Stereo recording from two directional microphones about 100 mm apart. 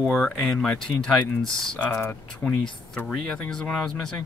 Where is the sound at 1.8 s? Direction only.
20° left (ahead or behind).